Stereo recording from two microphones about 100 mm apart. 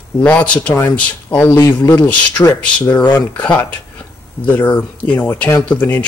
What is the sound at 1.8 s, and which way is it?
Speech, 45° left (ahead or behind).